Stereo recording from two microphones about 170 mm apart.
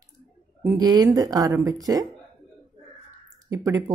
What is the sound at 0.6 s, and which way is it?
Speech, 20° right (ahead or behind).